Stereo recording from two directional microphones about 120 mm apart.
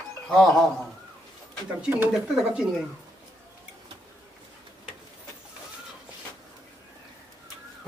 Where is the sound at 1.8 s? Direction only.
15° right (ahead or behind).